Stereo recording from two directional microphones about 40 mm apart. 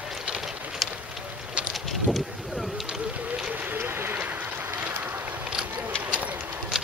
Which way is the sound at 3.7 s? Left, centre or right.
Right.